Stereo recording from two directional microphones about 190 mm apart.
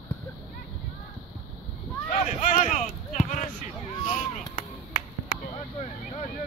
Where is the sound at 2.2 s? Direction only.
40° left (ahead or behind).